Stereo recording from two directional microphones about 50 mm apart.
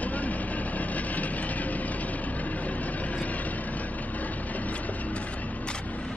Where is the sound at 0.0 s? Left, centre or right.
Left.